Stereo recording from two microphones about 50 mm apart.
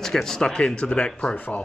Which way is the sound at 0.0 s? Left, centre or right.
Centre.